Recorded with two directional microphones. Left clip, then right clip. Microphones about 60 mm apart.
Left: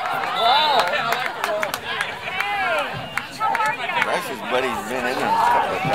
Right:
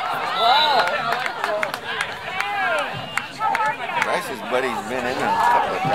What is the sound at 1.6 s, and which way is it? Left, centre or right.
Run, right.